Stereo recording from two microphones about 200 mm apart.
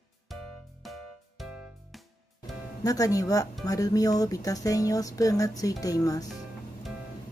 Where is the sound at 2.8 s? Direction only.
15° left (ahead or behind).